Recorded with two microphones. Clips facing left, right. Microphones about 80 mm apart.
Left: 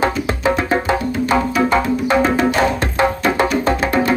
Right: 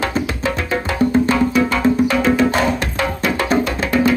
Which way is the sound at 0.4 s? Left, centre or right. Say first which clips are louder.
Left 4 dB; left.